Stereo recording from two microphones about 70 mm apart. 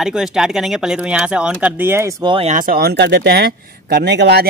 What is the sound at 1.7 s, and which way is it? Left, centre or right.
Speech, right.